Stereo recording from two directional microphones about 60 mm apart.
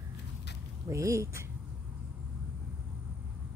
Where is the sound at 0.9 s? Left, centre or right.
Right.